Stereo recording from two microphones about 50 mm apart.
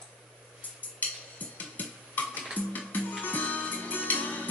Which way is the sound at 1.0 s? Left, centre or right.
Left.